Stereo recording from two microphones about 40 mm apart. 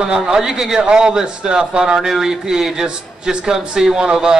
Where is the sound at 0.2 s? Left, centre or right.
Centre.